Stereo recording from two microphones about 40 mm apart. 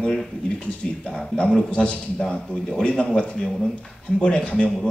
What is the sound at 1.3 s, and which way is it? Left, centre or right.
Speech, left.